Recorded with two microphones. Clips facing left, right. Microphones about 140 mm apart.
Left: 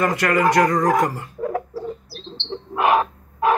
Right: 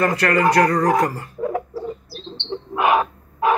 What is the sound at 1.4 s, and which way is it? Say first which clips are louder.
Bird: right 1 dB; 20° right (ahead or behind).